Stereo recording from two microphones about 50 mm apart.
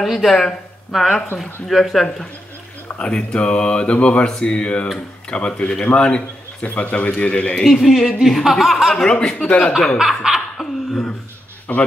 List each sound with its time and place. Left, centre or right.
0.0 s speech: centre
3.1 s speech: centre
7.6 s speech: centre
9.9 s laughter: centre
11.7 s speech: left